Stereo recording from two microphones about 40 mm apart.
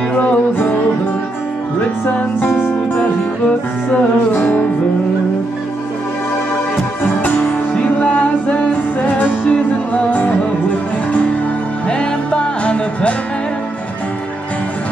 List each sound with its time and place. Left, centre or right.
0.1 s music: left
2.6 s music: left
4.3 s music: left
7.0 s music: left
7.7 s music: left
11.9 s music: left